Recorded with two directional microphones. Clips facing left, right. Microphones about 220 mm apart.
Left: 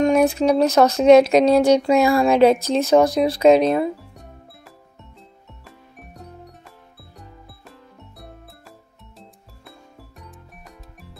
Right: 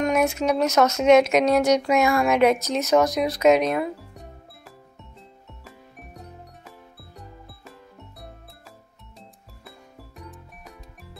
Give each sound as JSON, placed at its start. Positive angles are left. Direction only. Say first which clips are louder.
{"t": 0.0, "sound": "speech", "louder": "left 5 dB", "side_deg": 30}
{"t": 3.9, "sound": "music", "louder": "left 1 dB", "side_deg": 0}